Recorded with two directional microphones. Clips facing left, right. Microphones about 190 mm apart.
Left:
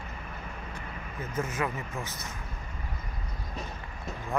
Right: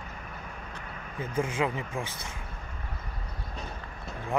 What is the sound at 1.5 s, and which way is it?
Speech, 15° right (ahead or behind).